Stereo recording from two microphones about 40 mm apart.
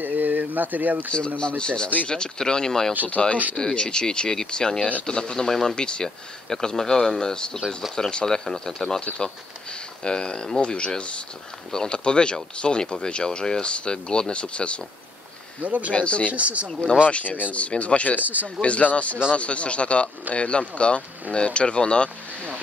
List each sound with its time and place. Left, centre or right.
0.0 s a sound: right
1.6 s speech: left
11.7 s speech: centre
15.6 s speech: right
15.9 s speech: left
16.3 s speech: right
16.6 s speech: left
17.0 s speech: left
18.2 s speech: right
18.6 s speech: left